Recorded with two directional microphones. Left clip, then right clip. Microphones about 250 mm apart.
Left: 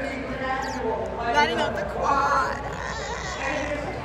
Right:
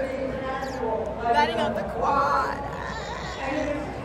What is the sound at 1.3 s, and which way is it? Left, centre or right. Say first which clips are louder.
Speech: even; centre.